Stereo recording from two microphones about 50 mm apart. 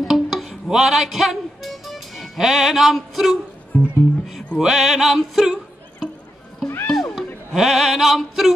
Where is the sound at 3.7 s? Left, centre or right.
Left.